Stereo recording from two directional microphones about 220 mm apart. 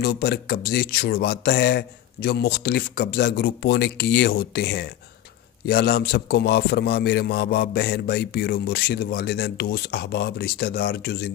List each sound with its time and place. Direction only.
0.0 s a man's voice: 45° left (ahead or behind)